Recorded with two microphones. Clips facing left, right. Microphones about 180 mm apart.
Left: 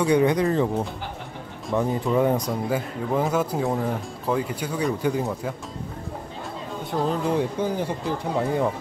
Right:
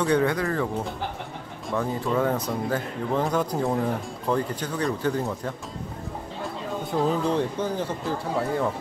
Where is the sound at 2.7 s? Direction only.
5° left (ahead or behind).